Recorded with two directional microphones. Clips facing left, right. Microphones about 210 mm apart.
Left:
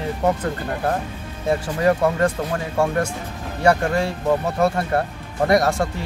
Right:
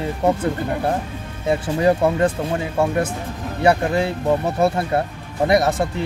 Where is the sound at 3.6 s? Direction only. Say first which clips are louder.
Right 1 dB; 20° right (ahead or behind).